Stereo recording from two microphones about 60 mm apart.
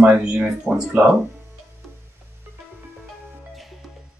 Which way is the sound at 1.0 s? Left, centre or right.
Right.